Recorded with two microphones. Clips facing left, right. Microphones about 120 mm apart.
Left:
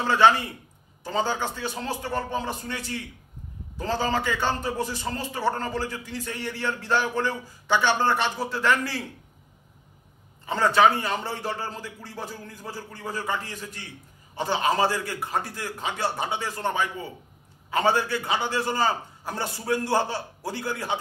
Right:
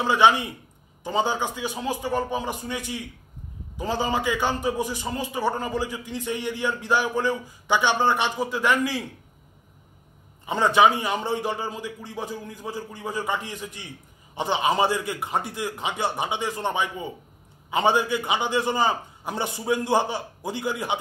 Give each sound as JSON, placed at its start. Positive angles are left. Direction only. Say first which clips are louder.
{"t": 0.0, "sound": "a man's voice", "louder": "even", "side_deg": -15}
{"t": 10.4, "sound": "a man's voice", "louder": "right 1 dB", "side_deg": -20}